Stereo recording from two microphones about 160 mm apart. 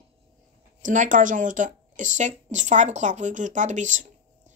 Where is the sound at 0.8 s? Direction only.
55° right (ahead or behind).